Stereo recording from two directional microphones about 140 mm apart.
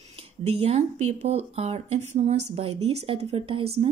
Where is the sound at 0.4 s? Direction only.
45° right (ahead or behind).